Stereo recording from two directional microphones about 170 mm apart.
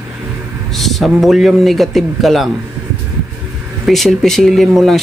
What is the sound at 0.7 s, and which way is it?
A man's voice, centre (ahead or behind).